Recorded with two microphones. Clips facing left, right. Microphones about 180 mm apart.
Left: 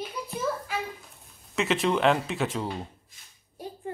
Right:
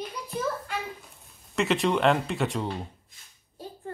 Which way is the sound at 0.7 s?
5° left (ahead or behind).